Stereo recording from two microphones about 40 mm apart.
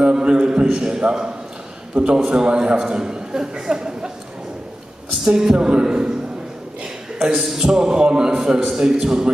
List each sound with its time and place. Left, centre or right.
0.0 s a man's voice: right
5.2 s a man's voice: centre
7.2 s a man's voice: centre
8.4 s a man's voice: centre